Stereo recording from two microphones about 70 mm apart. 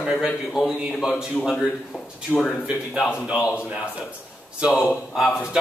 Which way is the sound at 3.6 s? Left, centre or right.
Centre.